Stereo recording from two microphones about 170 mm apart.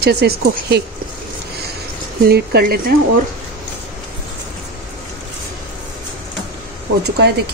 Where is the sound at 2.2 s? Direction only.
70° right (ahead or behind).